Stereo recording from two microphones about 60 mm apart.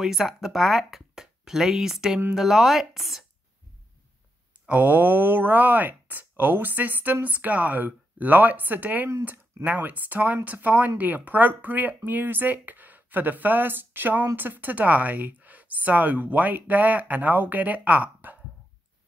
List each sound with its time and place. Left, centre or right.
0.0 s speech: centre
4.6 s speech: right